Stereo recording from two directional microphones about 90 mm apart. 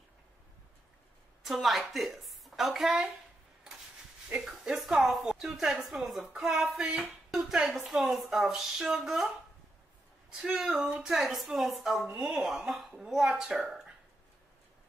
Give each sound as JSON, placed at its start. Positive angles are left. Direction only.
{"t": 1.4, "sound": "a woman's voice", "side_deg": 0}
{"t": 4.3, "sound": "a woman's voice", "side_deg": -5}
{"t": 10.4, "sound": "a woman's voice", "side_deg": -10}